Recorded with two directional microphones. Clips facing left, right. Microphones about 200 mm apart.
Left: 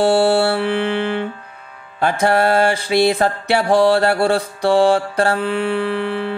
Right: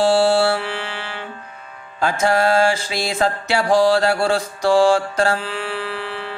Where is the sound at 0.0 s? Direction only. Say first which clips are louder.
Left 1 dB; 60° left (ahead or behind).